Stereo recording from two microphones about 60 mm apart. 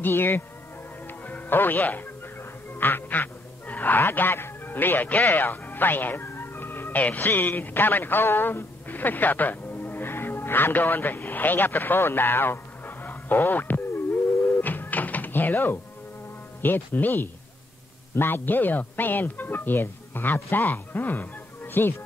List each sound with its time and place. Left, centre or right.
0.0 s speech: left
1.0 s music: left
1.4 s speech: left
14.6 s music: left
16.6 s speech: left